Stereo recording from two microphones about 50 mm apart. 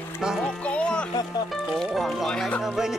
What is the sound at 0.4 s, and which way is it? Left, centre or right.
Music, left.